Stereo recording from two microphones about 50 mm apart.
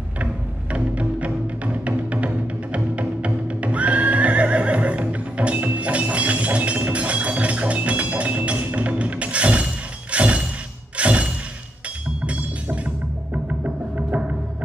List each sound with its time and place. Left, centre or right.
0.7 s music: right
10.1 s thump: right
11.0 s a sound: right
12.8 s music: right